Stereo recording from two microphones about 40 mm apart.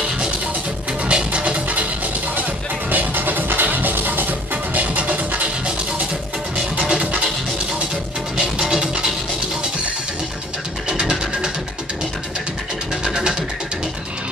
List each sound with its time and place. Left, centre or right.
1.0 s music: right
2.9 s music: right
6.9 s music: right
8.4 s music: centre
10.9 s a sound: right
13.0 s music: centre